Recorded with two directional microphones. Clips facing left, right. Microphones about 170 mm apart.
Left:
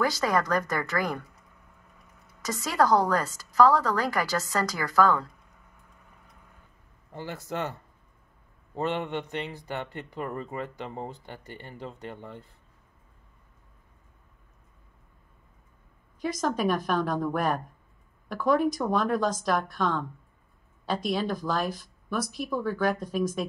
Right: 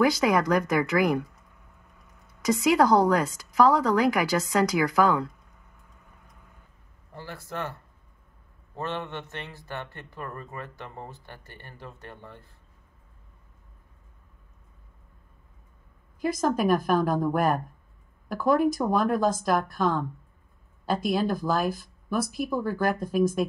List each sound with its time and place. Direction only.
0.0 s a woman's voice: 15° right (ahead or behind)
2.6 s a woman's voice: 15° right (ahead or behind)
7.2 s speech: 20° left (ahead or behind)
8.7 s a man's voice: 15° left (ahead or behind)
16.2 s speech: 5° right (ahead or behind)
18.3 s speech: centre (ahead or behind)